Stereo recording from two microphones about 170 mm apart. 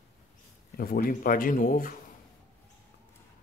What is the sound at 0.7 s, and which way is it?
Speech, 60° left (ahead or behind).